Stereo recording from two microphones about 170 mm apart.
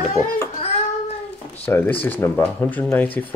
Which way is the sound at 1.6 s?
10° left (ahead or behind).